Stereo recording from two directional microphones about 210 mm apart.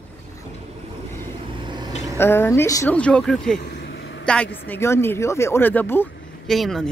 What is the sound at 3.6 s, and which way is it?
Vehicle, 55° left (ahead or behind).